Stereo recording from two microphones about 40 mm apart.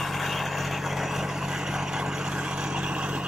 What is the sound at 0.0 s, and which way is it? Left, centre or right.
Vehicle, centre.